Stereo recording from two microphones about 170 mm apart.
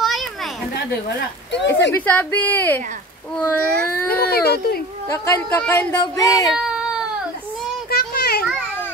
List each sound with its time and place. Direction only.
0.0 s a sound: centre (ahead or behind)
0.7 s speech: 85° left
1.9 s speech: 10° left (ahead or behind)
4.1 s speech: 65° left (ahead or behind)
5.1 s speech: 15° left (ahead or behind)
6.5 s cat: centre (ahead or behind)
7.9 s a sound: 65° left (ahead or behind)